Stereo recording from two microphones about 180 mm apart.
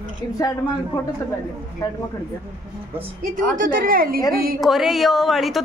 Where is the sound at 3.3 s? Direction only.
50° right (ahead or behind).